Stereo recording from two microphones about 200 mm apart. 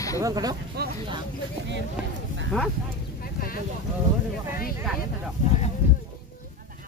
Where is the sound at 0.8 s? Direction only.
55° right (ahead or behind).